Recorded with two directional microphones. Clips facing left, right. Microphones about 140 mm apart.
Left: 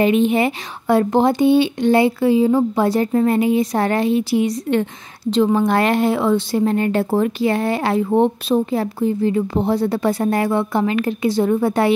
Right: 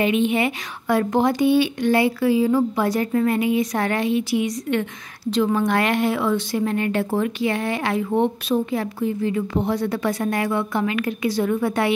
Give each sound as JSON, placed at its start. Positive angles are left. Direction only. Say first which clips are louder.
{"t": 0.0, "sound": "speech", "louder": "left 4 dB", "side_deg": 35}